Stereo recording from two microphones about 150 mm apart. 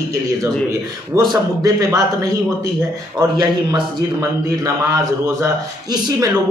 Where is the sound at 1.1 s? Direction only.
25° right (ahead or behind).